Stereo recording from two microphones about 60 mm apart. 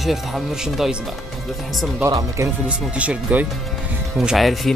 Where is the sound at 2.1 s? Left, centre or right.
Right.